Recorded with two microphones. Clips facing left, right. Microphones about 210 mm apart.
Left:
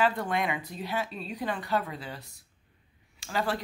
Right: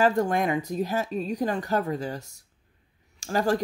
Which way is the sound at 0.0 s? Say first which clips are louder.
Right 5 dB; 45° right (ahead or behind).